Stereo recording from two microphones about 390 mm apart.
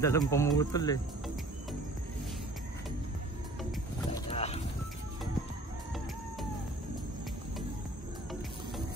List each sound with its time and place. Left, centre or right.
0.0 s speech: centre
4.3 s horse: centre